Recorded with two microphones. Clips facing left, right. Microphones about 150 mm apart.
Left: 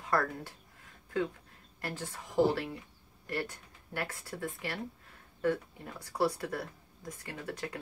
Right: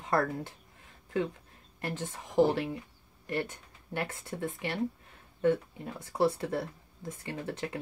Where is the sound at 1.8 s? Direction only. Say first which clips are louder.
Right 3 dB; 20° right (ahead or behind).